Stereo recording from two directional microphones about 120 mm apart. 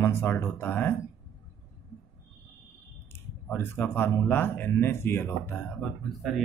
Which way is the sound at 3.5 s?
20° left (ahead or behind).